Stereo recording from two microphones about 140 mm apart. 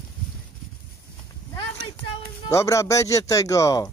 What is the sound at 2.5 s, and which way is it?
Speech, 20° left (ahead or behind).